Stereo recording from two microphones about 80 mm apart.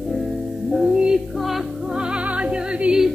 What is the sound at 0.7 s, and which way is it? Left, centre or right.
Music, centre.